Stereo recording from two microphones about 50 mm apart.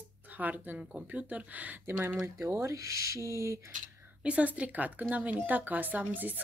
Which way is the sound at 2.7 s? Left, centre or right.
Right.